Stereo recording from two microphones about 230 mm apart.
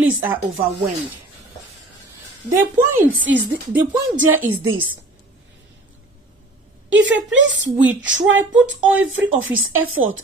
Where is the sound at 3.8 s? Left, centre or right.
Right.